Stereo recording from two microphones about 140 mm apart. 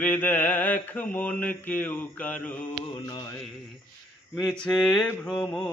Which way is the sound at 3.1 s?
25° left (ahead or behind).